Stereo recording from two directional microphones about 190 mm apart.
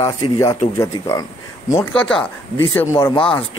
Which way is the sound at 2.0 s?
5° left (ahead or behind).